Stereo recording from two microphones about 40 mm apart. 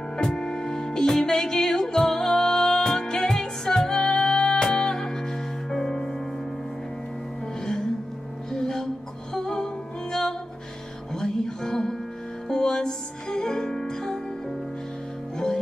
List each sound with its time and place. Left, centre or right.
0.2 s music: centre
8.5 s music: centre
11.1 s music: centre
15.3 s music: centre